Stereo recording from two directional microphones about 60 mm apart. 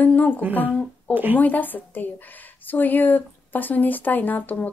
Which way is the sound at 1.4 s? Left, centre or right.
Left.